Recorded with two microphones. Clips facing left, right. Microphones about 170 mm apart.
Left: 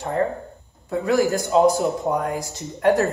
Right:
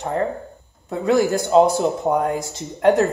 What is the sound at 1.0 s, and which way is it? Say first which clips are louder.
Speech: right 2 dB; 20° right (ahead or behind).